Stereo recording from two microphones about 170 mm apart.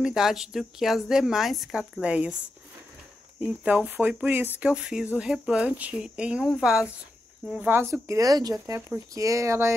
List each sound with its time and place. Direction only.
0.0 s speech: 5° right (ahead or behind)
3.3 s speech: 10° right (ahead or behind)